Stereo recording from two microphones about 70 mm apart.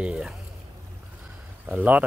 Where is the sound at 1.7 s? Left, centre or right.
Right.